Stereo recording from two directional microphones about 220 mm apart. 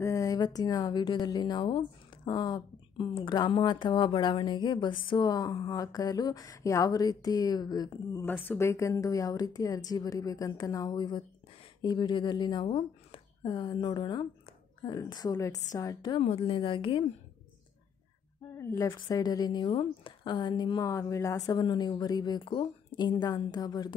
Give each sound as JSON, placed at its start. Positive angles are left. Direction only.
{"t": 0.0, "sound": "a woman's voice", "side_deg": 15}
{"t": 18.6, "sound": "a woman's voice", "side_deg": 10}